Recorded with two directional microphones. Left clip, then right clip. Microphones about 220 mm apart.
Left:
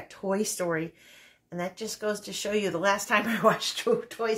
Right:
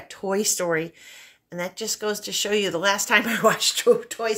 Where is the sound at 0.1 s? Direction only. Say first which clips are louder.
Right 5 dB; 40° right (ahead or behind).